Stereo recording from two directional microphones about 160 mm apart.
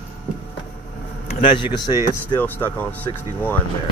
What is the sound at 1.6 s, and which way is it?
Speech, 30° left (ahead or behind).